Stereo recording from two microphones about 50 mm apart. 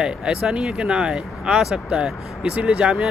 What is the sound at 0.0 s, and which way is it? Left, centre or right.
Speech, centre.